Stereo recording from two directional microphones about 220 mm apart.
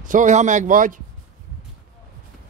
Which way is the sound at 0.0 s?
35° right (ahead or behind).